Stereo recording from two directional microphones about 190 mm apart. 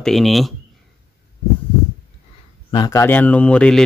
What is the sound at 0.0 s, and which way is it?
Speech, centre (ahead or behind).